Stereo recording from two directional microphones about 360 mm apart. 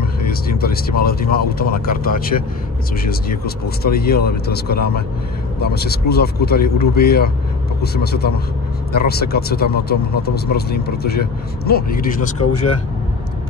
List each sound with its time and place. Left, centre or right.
0.3 s speech: left